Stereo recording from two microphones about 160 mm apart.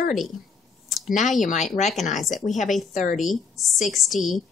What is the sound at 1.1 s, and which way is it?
Speech, 50° left (ahead or behind).